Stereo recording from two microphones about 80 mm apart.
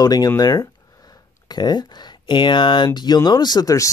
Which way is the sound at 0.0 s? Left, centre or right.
Left.